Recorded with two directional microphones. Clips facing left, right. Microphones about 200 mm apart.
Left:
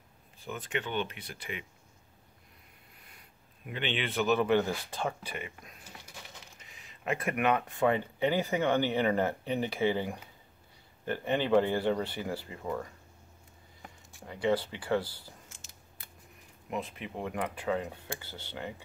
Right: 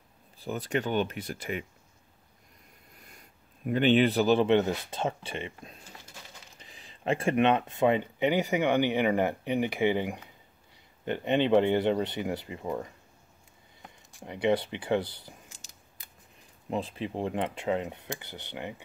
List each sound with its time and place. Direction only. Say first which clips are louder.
0.4 s speech: right 6 dB; 35° right (ahead or behind)
3.1 s speech: right 3 dB; 45° right (ahead or behind); by 12.9 s 20° right (ahead or behind)
14.2 s speech: right 3 dB; 20° right (ahead or behind)
16.6 s speech: right 5 dB; 30° right (ahead or behind)